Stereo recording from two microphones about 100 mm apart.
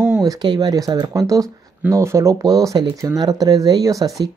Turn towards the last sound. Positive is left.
turn(degrees=-35)  # may be behind; listen again after turning